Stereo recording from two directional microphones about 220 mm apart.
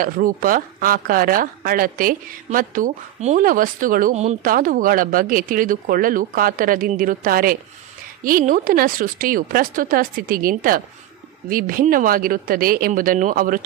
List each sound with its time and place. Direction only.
0.0 s speech: 40° right (ahead or behind)